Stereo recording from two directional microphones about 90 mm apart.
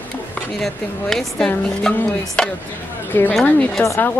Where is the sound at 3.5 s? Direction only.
15° left (ahead or behind).